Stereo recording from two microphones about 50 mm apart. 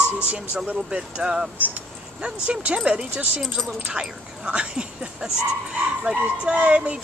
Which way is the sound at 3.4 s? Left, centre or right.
Centre.